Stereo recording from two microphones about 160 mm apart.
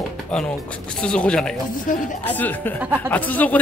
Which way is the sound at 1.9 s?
55° left (ahead or behind).